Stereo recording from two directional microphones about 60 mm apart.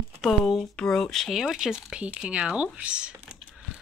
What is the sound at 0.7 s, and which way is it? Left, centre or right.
Speech, centre.